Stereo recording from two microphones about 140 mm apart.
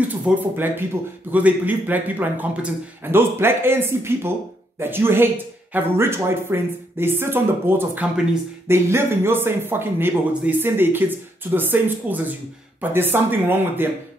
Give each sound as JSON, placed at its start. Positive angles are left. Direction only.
{"t": 0.2, "sound": "speech", "side_deg": -15}